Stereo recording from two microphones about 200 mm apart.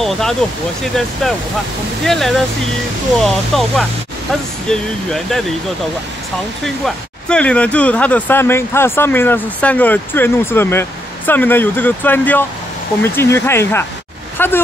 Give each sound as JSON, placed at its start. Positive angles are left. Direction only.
{"t": 0.0, "sound": "speech", "side_deg": 0}
{"t": 6.6, "sound": "speech", "side_deg": 5}